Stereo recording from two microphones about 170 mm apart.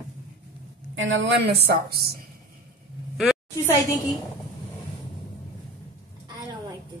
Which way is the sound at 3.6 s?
20° left (ahead or behind).